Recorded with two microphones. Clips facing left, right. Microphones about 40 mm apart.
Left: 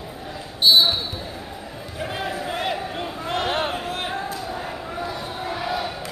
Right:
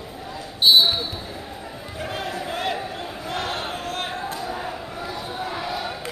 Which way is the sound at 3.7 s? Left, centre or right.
Centre.